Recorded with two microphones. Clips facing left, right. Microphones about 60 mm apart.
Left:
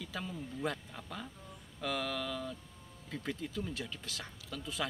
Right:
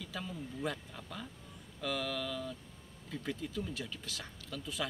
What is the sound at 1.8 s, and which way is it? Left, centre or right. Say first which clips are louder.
Speech: even; centre.